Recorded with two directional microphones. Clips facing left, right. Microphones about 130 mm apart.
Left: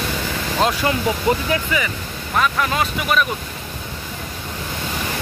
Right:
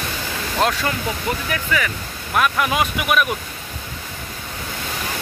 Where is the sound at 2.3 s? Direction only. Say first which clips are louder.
Right 1 dB; 5° right (ahead or behind).